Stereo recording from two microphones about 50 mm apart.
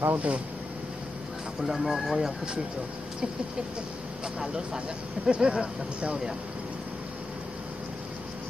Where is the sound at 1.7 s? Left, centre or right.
Centre.